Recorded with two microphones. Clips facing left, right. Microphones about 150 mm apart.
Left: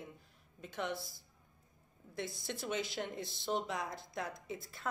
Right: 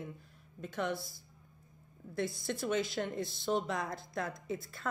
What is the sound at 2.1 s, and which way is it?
A woman's voice, 20° left (ahead or behind).